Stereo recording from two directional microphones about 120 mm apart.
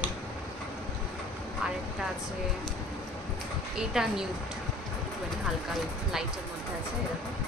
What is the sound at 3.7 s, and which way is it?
Speech, 5° right (ahead or behind).